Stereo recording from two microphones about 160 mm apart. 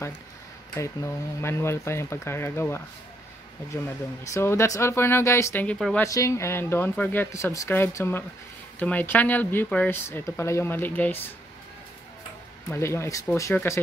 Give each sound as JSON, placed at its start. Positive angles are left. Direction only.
{"t": 0.7, "sound": "speech", "side_deg": 15}
{"t": 4.3, "sound": "speech", "side_deg": 15}
{"t": 6.0, "sound": "speech", "side_deg": 20}
{"t": 12.6, "sound": "speech", "side_deg": 15}